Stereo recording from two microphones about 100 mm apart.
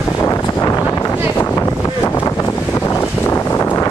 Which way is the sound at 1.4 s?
25° left (ahead or behind).